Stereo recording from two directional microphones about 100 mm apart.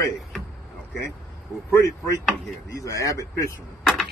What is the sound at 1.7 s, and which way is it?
Speech, 30° left (ahead or behind).